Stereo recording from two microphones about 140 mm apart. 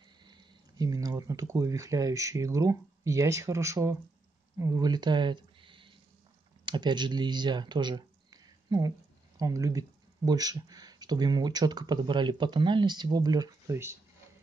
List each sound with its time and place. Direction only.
0.2 s speech: 30° right (ahead or behind)